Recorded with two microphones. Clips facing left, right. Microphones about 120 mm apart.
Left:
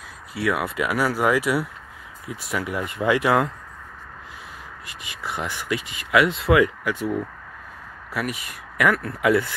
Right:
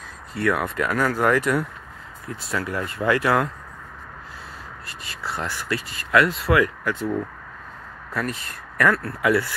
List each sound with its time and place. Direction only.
0.3 s speech: 5° left (ahead or behind); by 3.5 s 20° left (ahead or behind)
4.8 s speech: 15° left (ahead or behind)
6.3 s speech: 25° left (ahead or behind)
6.8 s speech: 15° left (ahead or behind)